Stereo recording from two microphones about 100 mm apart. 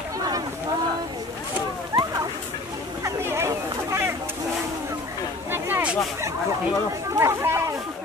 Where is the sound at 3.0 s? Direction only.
25° right (ahead or behind).